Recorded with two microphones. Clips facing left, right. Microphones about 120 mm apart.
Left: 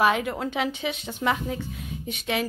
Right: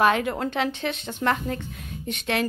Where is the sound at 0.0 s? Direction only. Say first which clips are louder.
Right 2 dB; 5° left (ahead or behind).